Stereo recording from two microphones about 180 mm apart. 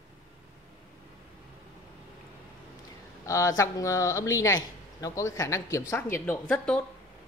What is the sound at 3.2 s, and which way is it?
A man's voice, 15° left (ahead or behind).